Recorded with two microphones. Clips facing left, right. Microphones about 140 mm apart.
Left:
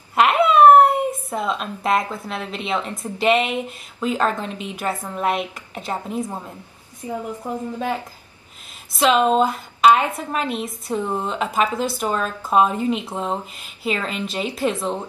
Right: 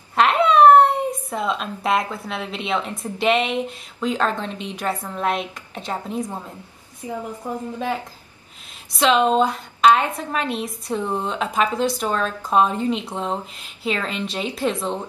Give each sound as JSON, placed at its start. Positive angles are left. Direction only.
{"t": 0.1, "sound": "a woman's voice", "side_deg": 5}